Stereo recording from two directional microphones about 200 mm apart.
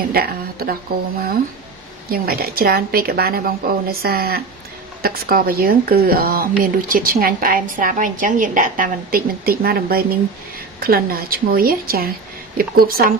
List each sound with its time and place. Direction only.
0.1 s speech: 50° right (ahead or behind)
2.0 s speech: 50° right (ahead or behind)